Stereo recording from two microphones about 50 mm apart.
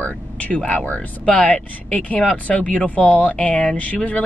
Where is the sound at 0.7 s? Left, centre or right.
Left.